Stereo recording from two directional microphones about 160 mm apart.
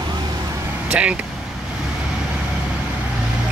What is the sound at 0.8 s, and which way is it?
Speech, 10° right (ahead or behind).